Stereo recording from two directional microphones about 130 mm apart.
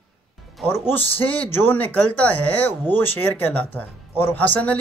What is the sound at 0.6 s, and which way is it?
Speech, 15° left (ahead or behind).